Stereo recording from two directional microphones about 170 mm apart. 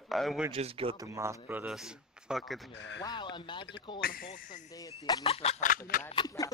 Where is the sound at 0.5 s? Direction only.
35° right (ahead or behind).